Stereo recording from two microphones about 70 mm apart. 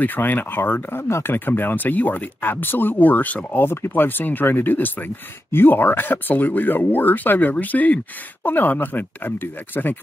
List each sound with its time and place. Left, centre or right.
0.0 s speech: left